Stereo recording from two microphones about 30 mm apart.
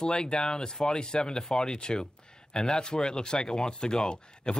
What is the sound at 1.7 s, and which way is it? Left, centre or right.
Speech, left.